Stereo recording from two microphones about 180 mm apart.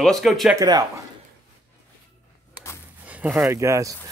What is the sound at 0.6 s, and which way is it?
Speech, 20° right (ahead or behind).